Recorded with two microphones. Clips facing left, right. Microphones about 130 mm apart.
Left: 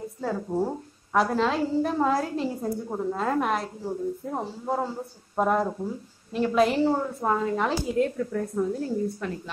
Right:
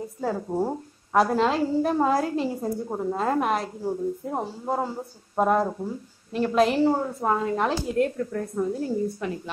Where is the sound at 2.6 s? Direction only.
15° right (ahead or behind).